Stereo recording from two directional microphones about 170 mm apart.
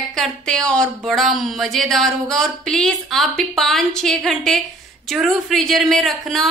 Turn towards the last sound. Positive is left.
turn(degrees=0)  # may be behind; listen again after turning